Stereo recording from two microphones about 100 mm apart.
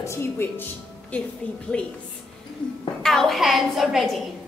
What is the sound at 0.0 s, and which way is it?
Speech, 25° left (ahead or behind).